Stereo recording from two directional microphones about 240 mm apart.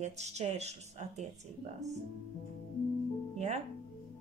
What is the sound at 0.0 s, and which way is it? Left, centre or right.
Speech, right.